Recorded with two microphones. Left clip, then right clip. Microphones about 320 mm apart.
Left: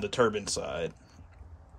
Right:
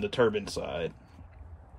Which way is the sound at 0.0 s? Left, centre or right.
Centre.